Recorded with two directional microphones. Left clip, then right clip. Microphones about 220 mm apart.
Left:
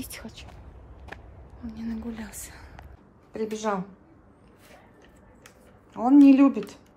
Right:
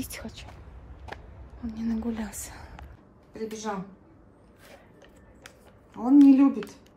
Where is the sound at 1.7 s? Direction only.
Centre (ahead or behind).